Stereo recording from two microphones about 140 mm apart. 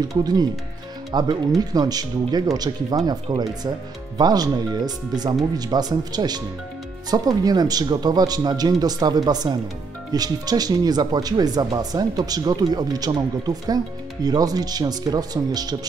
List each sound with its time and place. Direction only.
0.1 s speech: 25° right (ahead or behind)